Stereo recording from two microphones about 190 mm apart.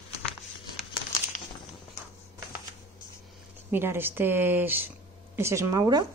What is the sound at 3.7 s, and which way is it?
A woman's voice, 10° right (ahead or behind).